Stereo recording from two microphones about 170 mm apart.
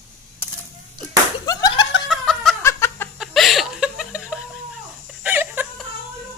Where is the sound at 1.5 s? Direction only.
25° left (ahead or behind).